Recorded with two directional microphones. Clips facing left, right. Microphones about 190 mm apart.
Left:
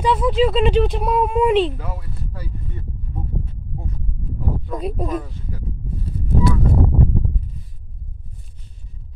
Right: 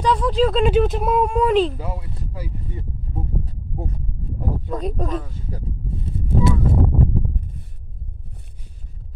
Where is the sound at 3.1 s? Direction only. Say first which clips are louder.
Right 1 dB; 35° right (ahead or behind).